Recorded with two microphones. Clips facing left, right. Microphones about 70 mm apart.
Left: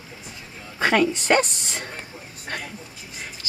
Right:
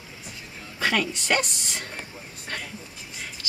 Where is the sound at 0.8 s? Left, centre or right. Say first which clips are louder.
Left 6 dB; left.